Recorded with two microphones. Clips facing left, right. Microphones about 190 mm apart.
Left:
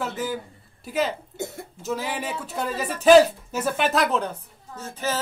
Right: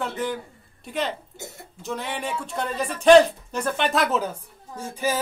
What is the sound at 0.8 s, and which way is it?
Speech, centre (ahead or behind).